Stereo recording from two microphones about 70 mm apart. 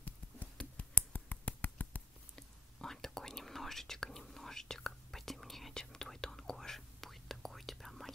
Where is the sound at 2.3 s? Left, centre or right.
Centre.